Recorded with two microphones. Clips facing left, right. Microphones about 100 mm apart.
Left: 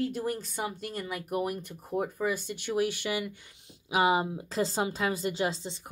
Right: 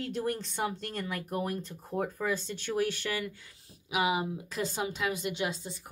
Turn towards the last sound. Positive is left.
turn(degrees=25)  # may be behind; listen again after turning